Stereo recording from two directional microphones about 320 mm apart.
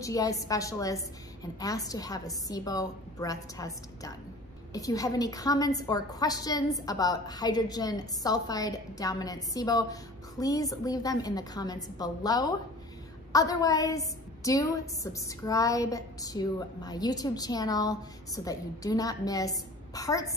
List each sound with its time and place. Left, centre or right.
0.0 s a woman's voice: centre